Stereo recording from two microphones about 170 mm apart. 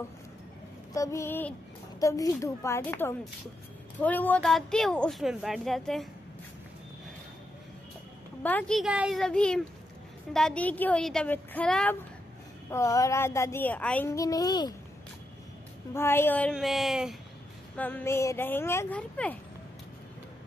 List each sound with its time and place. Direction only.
0.9 s speech: 20° left (ahead or behind); by 6.0 s centre (ahead or behind)
8.4 s speech: 10° left (ahead or behind)
12.7 s speech: 20° left (ahead or behind)
15.9 s speech: 15° left (ahead or behind); by 17.2 s centre (ahead or behind)
17.7 s speech: 10° left (ahead or behind)